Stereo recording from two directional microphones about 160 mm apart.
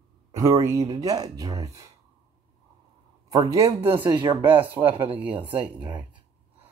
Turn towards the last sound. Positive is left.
turn(degrees=-30)  # may be behind; listen again after turning